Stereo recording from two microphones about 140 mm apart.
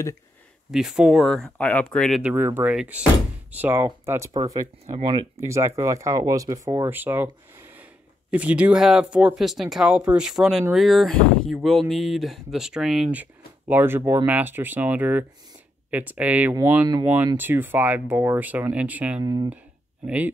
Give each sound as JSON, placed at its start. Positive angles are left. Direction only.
{"t": 0.7, "sound": "speech", "side_deg": -5}
{"t": 2.2, "sound": "speech", "side_deg": -15}
{"t": 2.7, "sound": "speech", "side_deg": -5}
{"t": 4.9, "sound": "speech", "side_deg": -40}
{"t": 5.4, "sound": "speech", "side_deg": -20}
{"t": 8.3, "sound": "speech", "side_deg": -10}
{"t": 19.2, "sound": "speech", "side_deg": -30}